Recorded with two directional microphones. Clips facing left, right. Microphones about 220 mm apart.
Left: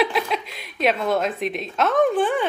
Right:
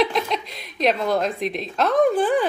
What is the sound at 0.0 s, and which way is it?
A woman's voice, 5° left (ahead or behind).